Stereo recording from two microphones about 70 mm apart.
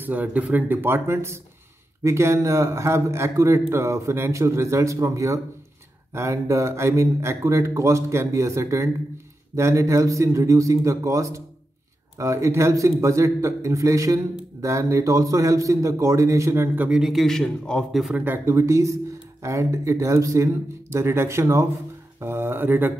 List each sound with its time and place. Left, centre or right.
0.0 s a man's voice: right
16.7 s speech: right
17.0 s a man's voice: centre
18.1 s speech: right
18.5 s a man's voice: right